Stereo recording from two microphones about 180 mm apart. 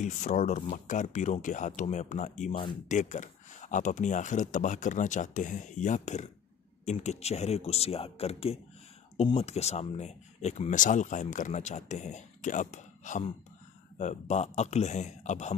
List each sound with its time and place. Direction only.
0.0 s speech: 40° left (ahead or behind)